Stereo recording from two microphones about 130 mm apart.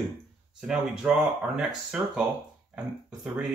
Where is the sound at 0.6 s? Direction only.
5° right (ahead or behind).